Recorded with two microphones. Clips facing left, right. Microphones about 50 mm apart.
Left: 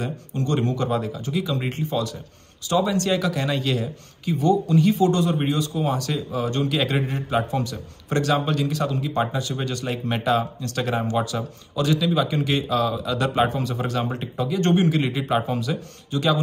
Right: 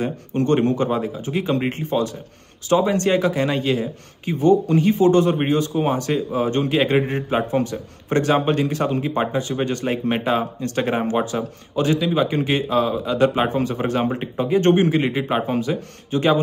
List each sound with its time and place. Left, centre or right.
0.0 s a man's voice: right
1.3 s a man's voice: right